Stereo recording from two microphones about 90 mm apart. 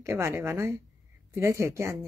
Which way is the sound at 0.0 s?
35° right (ahead or behind).